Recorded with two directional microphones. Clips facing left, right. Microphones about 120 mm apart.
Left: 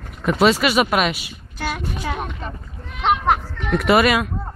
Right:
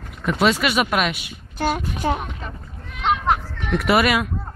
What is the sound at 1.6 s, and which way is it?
Speech, 40° right (ahead or behind).